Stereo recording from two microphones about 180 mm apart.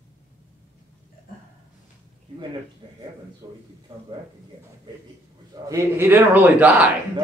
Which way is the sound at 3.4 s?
25° right (ahead or behind).